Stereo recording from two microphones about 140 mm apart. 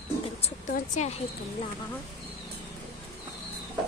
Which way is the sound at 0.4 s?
55° left (ahead or behind).